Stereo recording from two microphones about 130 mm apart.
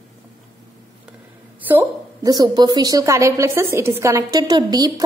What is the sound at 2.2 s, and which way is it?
A woman's voice, 30° right (ahead or behind).